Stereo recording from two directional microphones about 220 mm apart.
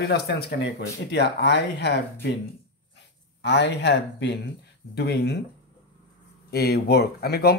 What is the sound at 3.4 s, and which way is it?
Speech, 50° left (ahead or behind).